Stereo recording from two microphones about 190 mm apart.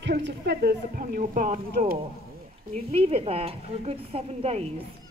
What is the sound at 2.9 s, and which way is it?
A woman's voice, 30° right (ahead or behind).